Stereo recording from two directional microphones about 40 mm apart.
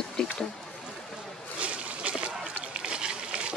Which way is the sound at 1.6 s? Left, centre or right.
Right.